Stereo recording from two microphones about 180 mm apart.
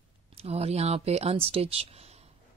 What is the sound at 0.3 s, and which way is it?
Speech, 35° right (ahead or behind).